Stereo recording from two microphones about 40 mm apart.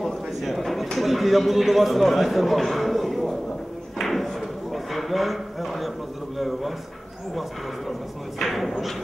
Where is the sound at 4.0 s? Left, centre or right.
Centre.